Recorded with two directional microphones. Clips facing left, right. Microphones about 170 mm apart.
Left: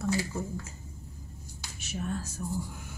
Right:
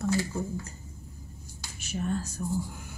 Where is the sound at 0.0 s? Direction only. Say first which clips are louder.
Right 2 dB; 5° left (ahead or behind).